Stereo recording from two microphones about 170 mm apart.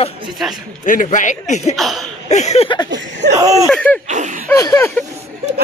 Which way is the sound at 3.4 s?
20° right (ahead or behind).